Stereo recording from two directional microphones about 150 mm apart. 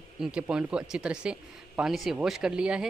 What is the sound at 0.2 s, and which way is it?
Speech, 5° right (ahead or behind).